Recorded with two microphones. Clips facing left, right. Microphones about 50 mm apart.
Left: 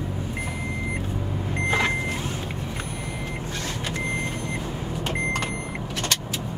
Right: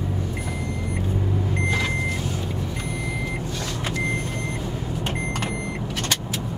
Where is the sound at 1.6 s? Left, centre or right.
Left.